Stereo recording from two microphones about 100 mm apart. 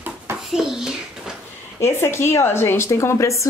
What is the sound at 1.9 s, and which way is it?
A woman's voice, 25° left (ahead or behind).